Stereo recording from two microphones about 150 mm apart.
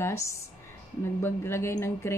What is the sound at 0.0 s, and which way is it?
A woman's voice, 20° left (ahead or behind).